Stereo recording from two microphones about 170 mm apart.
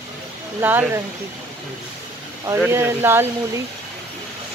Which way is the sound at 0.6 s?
10° right (ahead or behind).